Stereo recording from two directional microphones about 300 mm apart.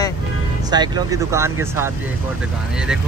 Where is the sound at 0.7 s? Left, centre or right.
Centre.